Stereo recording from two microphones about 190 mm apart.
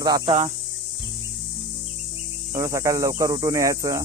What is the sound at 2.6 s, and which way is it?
Speech, 15° right (ahead or behind).